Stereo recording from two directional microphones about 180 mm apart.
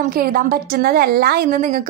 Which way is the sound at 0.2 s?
55° right (ahead or behind).